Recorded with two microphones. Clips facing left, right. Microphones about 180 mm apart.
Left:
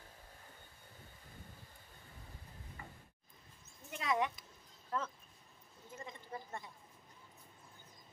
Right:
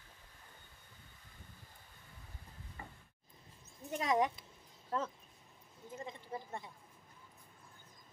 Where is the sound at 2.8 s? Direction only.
30° right (ahead or behind).